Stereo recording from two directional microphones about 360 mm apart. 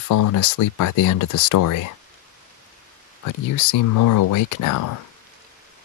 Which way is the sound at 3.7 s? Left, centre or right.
Left.